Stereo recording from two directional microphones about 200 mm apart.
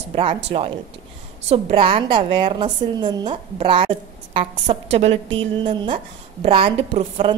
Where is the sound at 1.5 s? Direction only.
30° right (ahead or behind).